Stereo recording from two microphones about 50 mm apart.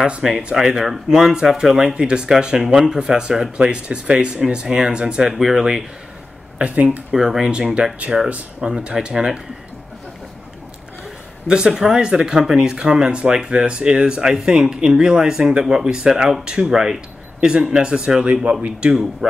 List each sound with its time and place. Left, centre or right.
0.0 s speech: centre
6.6 s speech: right
7.2 s speech: centre
11.4 s speech: centre